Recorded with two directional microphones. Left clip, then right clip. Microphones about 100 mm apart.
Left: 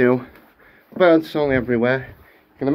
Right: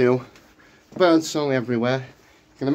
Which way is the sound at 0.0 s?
35° right (ahead or behind).